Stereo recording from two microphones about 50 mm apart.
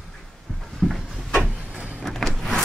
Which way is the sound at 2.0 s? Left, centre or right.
Centre.